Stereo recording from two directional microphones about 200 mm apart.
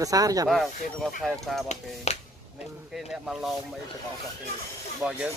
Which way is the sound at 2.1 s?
30° left (ahead or behind).